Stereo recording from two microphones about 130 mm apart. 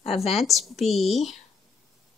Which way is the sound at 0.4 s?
Centre (ahead or behind).